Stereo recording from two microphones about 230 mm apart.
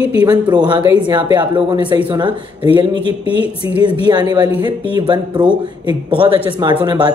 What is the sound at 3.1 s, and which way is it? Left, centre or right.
Speech, left.